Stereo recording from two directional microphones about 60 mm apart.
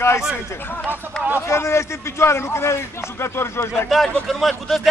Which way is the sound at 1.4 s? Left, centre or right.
Left.